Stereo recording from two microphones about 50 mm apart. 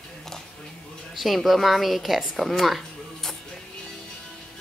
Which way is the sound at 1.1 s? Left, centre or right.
Centre.